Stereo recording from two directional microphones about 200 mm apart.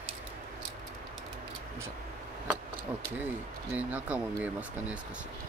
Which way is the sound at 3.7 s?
10° right (ahead or behind).